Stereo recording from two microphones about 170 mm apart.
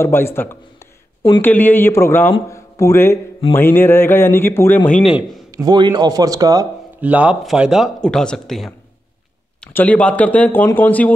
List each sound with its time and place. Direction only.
0.0 s speech: 15° left (ahead or behind)
5.0 s speech: 5° right (ahead or behind)
5.5 s speech: 25° right (ahead or behind)
7.0 s speech: 10° right (ahead or behind); by 11.1 s 10° left (ahead or behind)